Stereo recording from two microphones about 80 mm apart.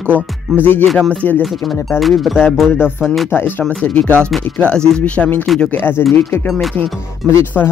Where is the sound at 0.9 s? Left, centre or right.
Centre.